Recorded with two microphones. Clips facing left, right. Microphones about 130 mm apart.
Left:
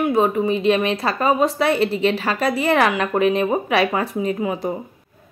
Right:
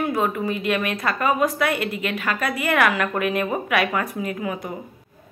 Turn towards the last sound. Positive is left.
turn(degrees=30)  # may be behind; listen again after turning